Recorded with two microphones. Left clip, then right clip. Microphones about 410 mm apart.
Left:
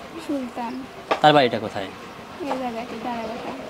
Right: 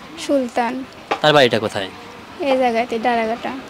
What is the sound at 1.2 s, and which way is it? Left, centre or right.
Speech, centre.